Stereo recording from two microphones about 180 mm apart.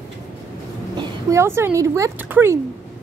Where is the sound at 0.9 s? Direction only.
20° right (ahead or behind).